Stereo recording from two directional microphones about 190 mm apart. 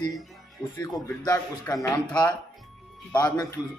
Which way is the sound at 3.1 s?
20° left (ahead or behind).